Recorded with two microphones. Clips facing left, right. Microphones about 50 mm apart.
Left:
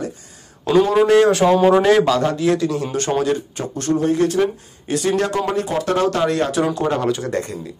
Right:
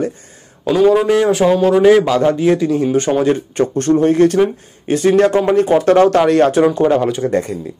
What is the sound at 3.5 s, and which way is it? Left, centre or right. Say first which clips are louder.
Speech: right 7 dB; right.